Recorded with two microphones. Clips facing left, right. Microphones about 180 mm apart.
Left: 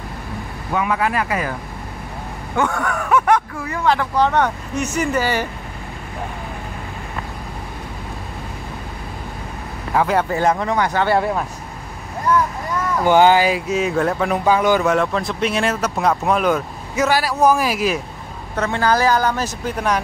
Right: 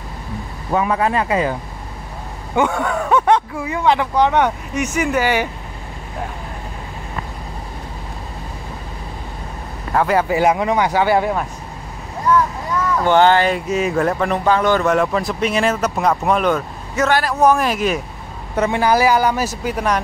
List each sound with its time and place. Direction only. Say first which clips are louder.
0.7 s a sound: right 2 dB; 30° right (ahead or behind)
2.5 s a sound: right 3 dB; 20° right (ahead or behind)
3.6 s speech: right 2 dB; 15° right (ahead or behind)
9.9 s speech: right 2 dB; centre (ahead or behind)
13.0 s speech: left 1 dB; 10° left (ahead or behind)
18.6 s speech: right 2 dB; 15° right (ahead or behind)